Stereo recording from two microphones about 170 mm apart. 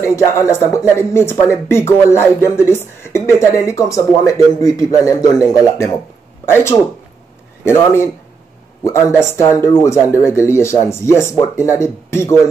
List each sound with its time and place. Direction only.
0.0 s speech: 15° left (ahead or behind)